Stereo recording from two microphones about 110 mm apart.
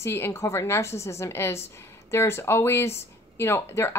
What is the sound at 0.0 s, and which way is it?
A woman's voice, 25° left (ahead or behind).